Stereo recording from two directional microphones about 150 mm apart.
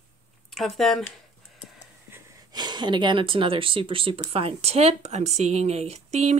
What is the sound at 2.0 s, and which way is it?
Wheeze, 15° right (ahead or behind).